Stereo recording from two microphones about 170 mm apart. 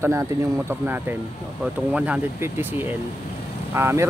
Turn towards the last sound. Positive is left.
turn(degrees=-15)  # may be behind; listen again after turning